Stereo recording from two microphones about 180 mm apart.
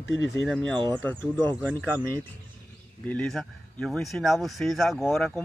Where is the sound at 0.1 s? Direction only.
90° left.